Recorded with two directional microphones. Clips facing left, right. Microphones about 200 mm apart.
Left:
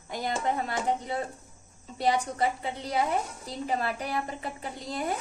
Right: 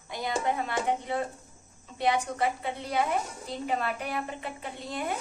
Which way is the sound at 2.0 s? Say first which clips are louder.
Left 1 dB; 35° left (ahead or behind).